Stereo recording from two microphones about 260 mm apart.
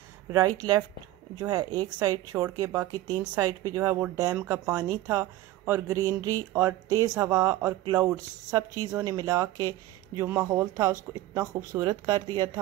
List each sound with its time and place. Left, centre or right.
1.4 s speech: centre